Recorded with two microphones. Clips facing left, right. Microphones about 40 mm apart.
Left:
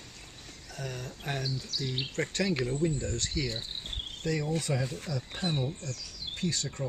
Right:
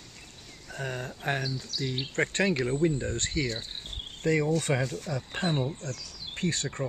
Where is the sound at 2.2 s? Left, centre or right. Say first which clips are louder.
Right 4 dB; right.